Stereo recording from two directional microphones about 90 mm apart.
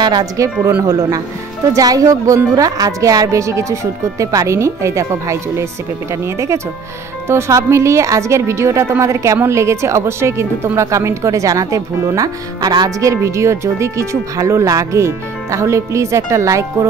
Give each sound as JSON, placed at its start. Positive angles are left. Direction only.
{"t": 0.0, "sound": "speech", "side_deg": -45}
{"t": 0.7, "sound": "speech", "side_deg": -30}